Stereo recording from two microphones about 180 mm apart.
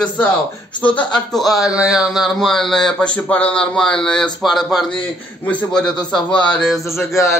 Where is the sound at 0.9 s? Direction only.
5° left (ahead or behind).